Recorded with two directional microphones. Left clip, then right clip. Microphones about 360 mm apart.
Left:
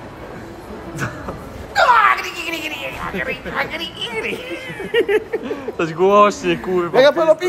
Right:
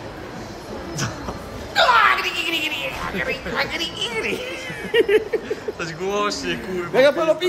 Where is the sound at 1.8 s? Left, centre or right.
Centre.